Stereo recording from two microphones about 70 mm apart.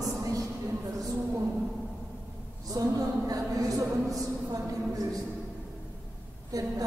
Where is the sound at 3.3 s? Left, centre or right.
Right.